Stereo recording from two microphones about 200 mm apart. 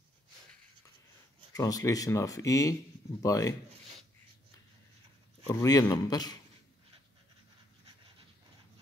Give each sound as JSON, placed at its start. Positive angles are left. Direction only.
{"t": 1.5, "sound": "speech", "side_deg": 15}
{"t": 5.5, "sound": "a man's voice", "side_deg": 15}